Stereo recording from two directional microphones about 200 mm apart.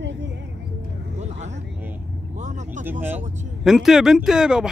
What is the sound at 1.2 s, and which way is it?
Vehicle, 35° right (ahead or behind).